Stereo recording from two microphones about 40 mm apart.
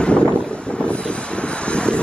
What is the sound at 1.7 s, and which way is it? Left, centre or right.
Vehicle, left.